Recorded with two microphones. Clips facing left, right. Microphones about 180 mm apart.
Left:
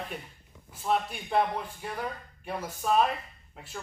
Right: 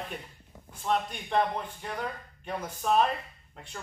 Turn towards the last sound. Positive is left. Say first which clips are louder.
# even
turn(degrees=5)  # may be behind; listen again after turning